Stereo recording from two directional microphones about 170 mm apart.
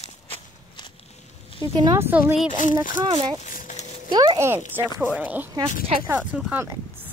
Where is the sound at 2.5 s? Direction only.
50° left (ahead or behind).